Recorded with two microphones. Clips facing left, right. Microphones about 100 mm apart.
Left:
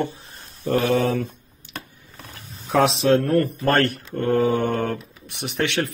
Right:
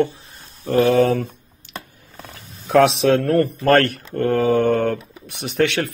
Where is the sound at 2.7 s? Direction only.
60° right (ahead or behind).